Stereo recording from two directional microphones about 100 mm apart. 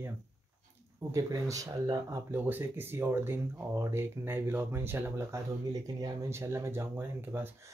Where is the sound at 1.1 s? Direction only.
35° right (ahead or behind).